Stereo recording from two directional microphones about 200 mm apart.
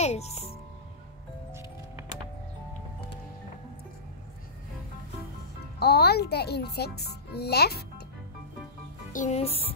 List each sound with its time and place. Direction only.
0.0 s music: 35° left (ahead or behind)
5.8 s a child's voice: 55° left (ahead or behind)
9.1 s speech: 35° left (ahead or behind)